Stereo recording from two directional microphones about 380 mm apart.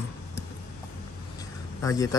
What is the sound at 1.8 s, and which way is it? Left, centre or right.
Speech, centre.